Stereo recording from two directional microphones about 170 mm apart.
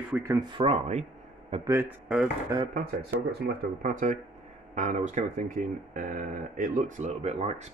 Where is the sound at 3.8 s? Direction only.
50° right (ahead or behind).